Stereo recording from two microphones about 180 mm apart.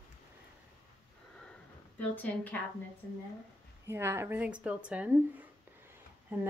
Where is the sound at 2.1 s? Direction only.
10° left (ahead or behind).